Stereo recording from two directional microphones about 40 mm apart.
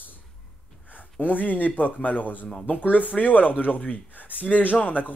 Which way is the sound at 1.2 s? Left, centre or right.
Left.